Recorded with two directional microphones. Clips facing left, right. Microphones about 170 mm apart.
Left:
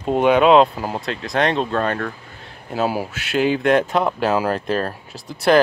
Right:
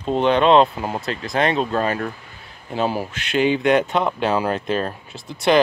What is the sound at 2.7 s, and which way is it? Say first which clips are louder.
Speech: left 1 dB; 5° left (ahead or behind).